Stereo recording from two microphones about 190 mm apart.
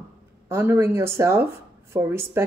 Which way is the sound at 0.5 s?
15° right (ahead or behind).